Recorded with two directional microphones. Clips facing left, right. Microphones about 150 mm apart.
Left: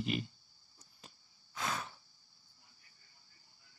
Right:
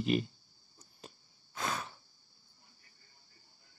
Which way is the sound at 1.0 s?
40° right (ahead or behind).